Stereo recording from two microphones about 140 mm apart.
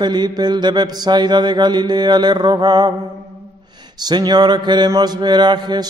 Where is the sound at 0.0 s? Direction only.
30° right (ahead or behind).